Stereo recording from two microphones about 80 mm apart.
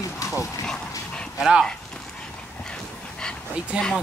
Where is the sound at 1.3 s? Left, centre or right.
Centre.